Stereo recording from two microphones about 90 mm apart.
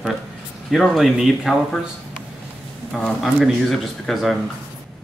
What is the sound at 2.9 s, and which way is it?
Speech, centre (ahead or behind).